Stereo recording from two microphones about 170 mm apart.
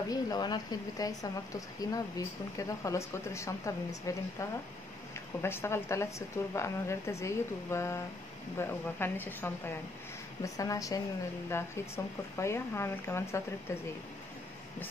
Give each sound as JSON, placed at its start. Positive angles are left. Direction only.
{"t": 0.1, "sound": "a woman's voice", "side_deg": 25}